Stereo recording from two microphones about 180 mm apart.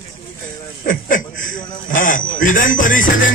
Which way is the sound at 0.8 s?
50° left (ahead or behind).